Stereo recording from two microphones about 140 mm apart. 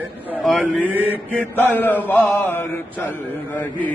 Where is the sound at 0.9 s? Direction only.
10° right (ahead or behind).